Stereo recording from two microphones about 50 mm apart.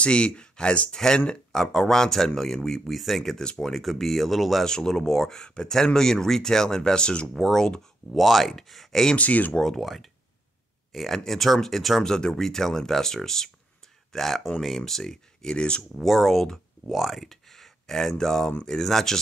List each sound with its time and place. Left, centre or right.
0.0 s a man's voice: centre
4.6 s a man's voice: centre
7.3 s a man's voice: centre
9.1 s speech: left
9.5 s a man's voice: centre
9.8 s a man's voice: centre
15.5 s speech: centre
16.0 s a man's voice: centre